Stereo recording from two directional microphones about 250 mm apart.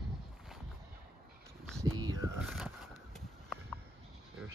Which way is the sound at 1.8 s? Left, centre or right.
Centre.